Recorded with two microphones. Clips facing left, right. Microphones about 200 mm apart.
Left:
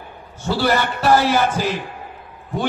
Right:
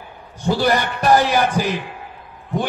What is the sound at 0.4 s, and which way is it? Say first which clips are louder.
Speech: right 1 dB; 15° right (ahead or behind).